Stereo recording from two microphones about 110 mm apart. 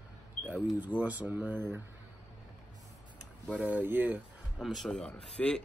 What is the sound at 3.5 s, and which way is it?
Speech, 15° right (ahead or behind).